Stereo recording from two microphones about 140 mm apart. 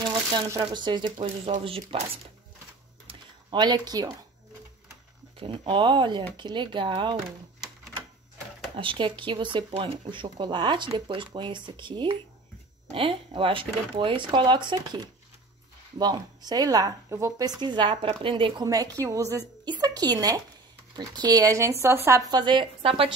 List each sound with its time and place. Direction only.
0.0 s a sound: 35° right (ahead or behind)
0.6 s speech: 35° right (ahead or behind)
3.1 s a sound: 30° right (ahead or behind)
5.4 s speech: 40° right (ahead or behind)
8.7 s speech: 35° right (ahead or behind); by 22.2 s 20° right (ahead or behind)
22.3 s speech: 35° right (ahead or behind)